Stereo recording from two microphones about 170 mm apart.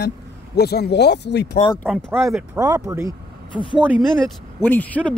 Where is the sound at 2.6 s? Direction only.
20° right (ahead or behind).